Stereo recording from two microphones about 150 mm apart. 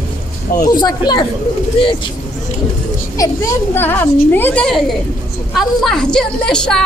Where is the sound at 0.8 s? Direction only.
25° left (ahead or behind).